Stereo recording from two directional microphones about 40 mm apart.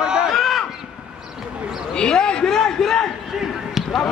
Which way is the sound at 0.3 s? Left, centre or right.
Centre.